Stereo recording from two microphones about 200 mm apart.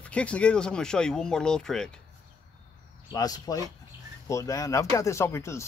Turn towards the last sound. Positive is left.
turn(degrees=15)  # may be behind; listen again after turning